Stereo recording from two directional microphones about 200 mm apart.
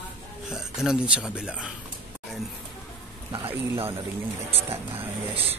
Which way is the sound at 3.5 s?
10° right (ahead or behind).